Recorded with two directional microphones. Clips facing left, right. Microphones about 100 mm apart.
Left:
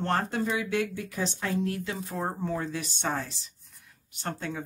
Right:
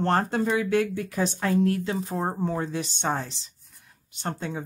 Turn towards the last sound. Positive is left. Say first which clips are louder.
# right 3 dB
turn(degrees=-20)  # may be behind; listen again after turning